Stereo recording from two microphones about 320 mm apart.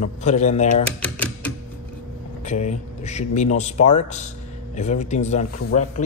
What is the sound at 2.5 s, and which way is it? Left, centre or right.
Speech, left.